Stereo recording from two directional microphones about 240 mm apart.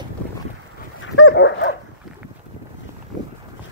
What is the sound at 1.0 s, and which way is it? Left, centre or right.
Dog, left.